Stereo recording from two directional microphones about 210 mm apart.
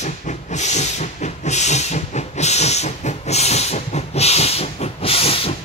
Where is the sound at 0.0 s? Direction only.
35° left (ahead or behind).